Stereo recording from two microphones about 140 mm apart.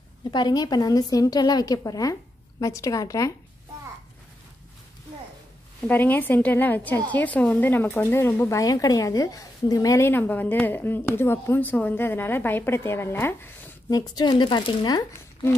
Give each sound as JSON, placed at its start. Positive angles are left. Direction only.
{"t": 0.3, "sound": "a woman's voice", "side_deg": 30}
{"t": 5.9, "sound": "speech", "side_deg": 10}
{"t": 13.8, "sound": "a woman's voice", "side_deg": 30}